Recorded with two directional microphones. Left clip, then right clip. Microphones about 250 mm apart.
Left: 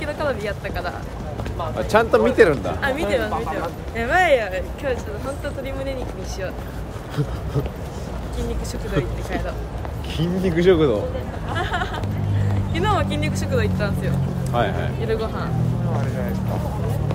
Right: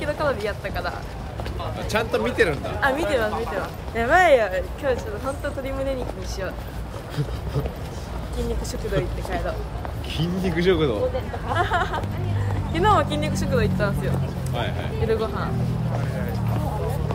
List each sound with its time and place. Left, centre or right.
0.0 s speech: centre
1.9 s speech: centre
2.8 s speech: centre
10.1 s speech: centre
11.5 s speech: centre
14.4 s speech: centre
15.0 s speech: centre